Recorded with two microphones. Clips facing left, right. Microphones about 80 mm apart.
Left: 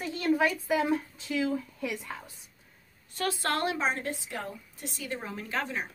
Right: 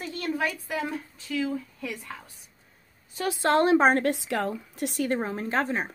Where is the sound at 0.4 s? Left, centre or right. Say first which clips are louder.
Left 3 dB; centre.